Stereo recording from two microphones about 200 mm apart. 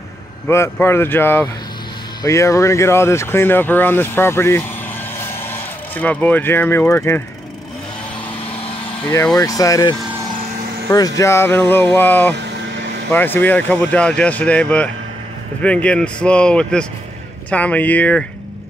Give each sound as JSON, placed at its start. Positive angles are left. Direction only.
{"t": 0.5, "sound": "speech", "side_deg": 10}
{"t": 9.0, "sound": "speech", "side_deg": 15}